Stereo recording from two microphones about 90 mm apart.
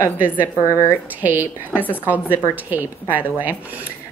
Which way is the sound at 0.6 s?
35° left (ahead or behind).